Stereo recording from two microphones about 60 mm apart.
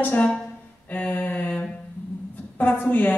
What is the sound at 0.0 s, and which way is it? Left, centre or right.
Speech, left.